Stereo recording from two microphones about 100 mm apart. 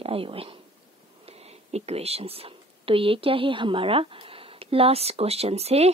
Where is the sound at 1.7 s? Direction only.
90° right.